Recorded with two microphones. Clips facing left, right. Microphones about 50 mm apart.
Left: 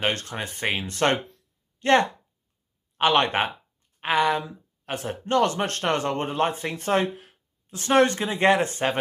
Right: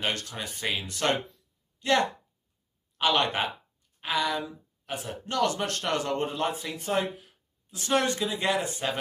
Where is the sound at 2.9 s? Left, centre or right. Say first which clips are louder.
Left 5 dB; left.